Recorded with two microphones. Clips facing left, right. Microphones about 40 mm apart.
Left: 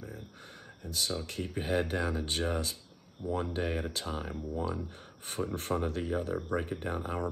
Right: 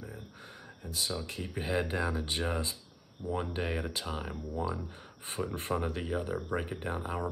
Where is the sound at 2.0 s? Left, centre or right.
Centre.